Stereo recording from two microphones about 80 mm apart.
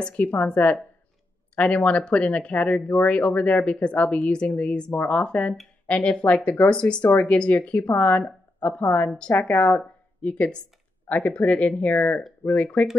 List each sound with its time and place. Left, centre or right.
0.0 s speech: centre